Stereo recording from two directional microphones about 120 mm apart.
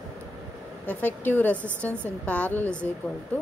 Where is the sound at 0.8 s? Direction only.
15° left (ahead or behind).